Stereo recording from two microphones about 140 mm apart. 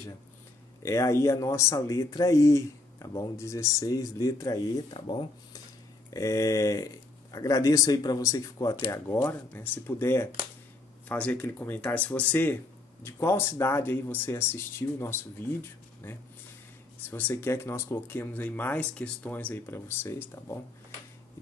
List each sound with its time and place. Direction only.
0.8 s speech: 20° left (ahead or behind)
5.1 s speech: 40° left (ahead or behind)
6.0 s speech: 25° left (ahead or behind)
17.1 s speech: 15° left (ahead or behind)